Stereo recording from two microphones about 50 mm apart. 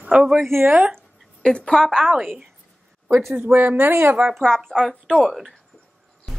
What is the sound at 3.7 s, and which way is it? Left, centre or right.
Speech, right.